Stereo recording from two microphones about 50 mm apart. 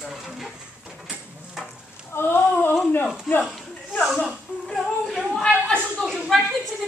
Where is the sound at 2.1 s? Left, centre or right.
Left.